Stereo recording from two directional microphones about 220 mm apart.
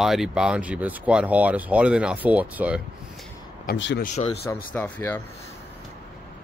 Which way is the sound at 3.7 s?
40° left (ahead or behind).